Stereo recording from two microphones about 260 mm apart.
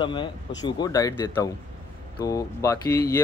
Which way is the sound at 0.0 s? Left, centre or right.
Centre.